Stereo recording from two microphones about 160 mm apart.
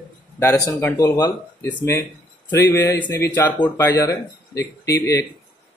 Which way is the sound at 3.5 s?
25° left (ahead or behind).